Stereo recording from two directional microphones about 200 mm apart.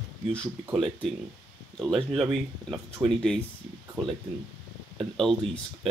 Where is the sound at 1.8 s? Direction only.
5° left (ahead or behind).